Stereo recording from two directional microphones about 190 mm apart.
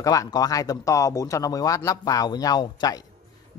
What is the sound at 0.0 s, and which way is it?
Speech, 20° left (ahead or behind).